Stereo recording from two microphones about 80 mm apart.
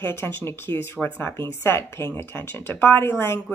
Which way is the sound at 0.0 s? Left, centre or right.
Left.